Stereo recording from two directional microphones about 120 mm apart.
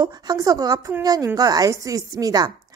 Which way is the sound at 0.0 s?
30° right (ahead or behind).